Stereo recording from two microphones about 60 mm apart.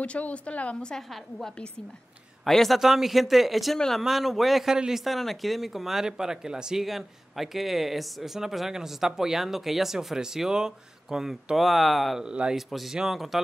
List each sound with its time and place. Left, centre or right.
0.0 s a woman's voice: centre
2.4 s speech: centre
12.2 s speech: centre
12.5 s speech: centre